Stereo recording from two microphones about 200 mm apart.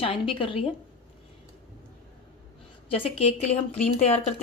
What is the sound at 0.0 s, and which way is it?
Speech, 25° left (ahead or behind).